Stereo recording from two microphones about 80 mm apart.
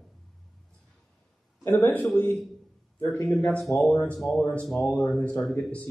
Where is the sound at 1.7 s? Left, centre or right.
Left.